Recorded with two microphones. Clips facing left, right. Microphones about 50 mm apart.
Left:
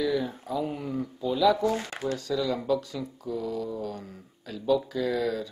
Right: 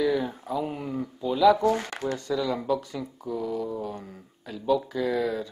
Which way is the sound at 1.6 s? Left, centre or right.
Right.